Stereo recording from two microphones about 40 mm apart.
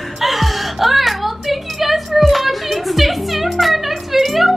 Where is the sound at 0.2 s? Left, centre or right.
Centre.